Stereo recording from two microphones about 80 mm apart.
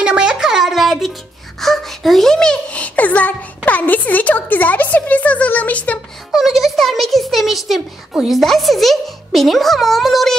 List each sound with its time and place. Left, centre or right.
0.0 s music: centre
1.6 s a sound: centre
6.3 s a child's voice: centre